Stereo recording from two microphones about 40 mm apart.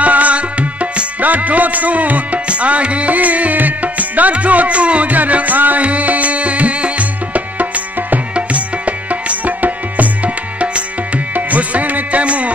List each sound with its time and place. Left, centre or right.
0.0 s music: right